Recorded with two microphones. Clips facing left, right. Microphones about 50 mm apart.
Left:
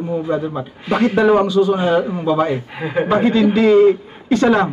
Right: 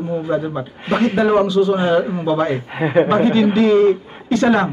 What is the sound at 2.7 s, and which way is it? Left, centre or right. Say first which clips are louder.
Speech: right 9 dB; right.